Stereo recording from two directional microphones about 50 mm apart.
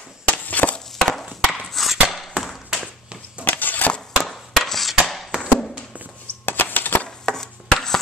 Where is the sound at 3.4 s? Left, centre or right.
Left.